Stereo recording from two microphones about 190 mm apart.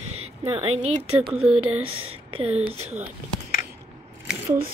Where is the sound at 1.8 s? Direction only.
90° right.